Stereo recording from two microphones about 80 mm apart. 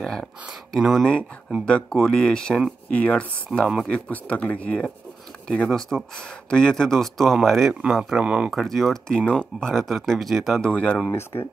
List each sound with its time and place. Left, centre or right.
0.0 s speech: centre
1.7 s speech: centre
3.5 s speech: centre
3.8 s speech: centre
8.5 s speech: centre
10.6 s speech: centre
11.1 s speech: left